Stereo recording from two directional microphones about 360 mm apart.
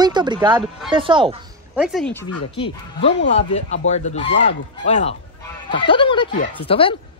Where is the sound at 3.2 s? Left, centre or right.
Centre.